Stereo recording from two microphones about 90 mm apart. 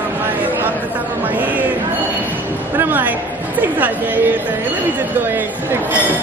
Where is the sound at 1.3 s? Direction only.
20° right (ahead or behind).